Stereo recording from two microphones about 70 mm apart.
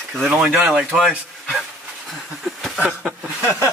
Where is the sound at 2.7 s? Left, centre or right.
Centre.